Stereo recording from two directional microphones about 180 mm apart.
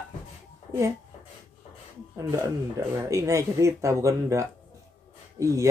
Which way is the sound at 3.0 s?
15° right (ahead or behind).